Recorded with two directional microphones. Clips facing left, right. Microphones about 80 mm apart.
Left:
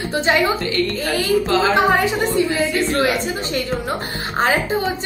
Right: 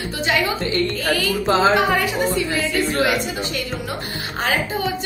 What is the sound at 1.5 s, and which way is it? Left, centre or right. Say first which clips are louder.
Speech: right 5 dB; right.